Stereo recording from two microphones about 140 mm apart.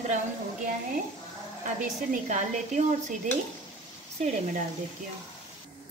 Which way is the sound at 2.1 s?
60° right (ahead or behind).